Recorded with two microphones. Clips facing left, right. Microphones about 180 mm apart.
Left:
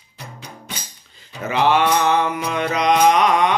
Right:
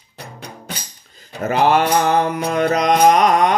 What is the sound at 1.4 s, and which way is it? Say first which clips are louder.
Mantra: right 2 dB; 45° right (ahead or behind).